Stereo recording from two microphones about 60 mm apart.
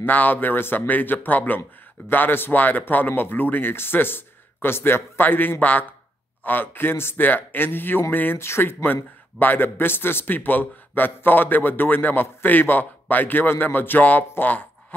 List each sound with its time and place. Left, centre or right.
0.0 s a man's voice: left
8.4 s a man's voice: left
14.3 s a sound: left